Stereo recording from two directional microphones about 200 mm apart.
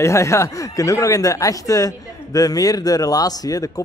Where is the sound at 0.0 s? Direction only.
15° left (ahead or behind).